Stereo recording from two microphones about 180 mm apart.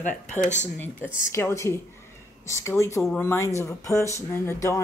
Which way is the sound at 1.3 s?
15° left (ahead or behind).